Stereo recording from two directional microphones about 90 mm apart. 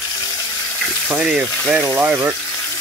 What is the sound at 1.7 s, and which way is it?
Speech, 20° right (ahead or behind).